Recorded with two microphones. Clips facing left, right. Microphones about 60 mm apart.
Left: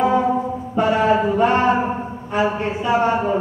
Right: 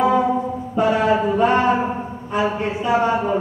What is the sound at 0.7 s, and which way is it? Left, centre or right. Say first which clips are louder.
Mantra: left 1 dB; left.